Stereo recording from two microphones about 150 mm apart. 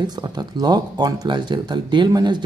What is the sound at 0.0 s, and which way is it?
Speech, 30° right (ahead or behind).